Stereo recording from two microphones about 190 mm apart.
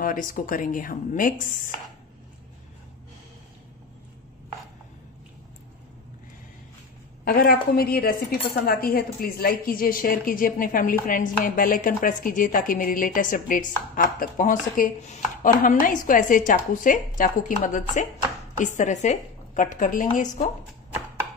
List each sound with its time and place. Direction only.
0.0 s a woman's voice: 45° left (ahead or behind)
7.2 s a woman's voice: 50° left (ahead or behind)